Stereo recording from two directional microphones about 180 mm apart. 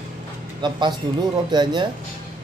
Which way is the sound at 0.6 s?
25° right (ahead or behind).